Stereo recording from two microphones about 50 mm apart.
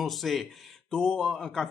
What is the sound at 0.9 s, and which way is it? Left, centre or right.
Speech, centre.